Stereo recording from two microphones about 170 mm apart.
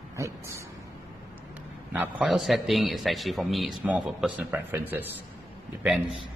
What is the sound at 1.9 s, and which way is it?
A man's voice, 5° right (ahead or behind).